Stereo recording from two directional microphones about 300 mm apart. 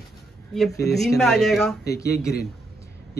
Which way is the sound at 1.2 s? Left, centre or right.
Centre.